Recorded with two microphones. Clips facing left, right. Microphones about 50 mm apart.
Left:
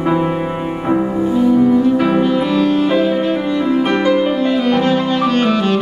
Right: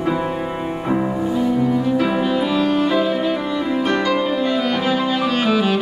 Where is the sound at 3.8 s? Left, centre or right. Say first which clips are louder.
Left 3 dB; centre.